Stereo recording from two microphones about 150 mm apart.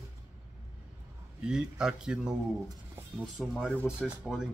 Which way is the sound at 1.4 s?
5° right (ahead or behind).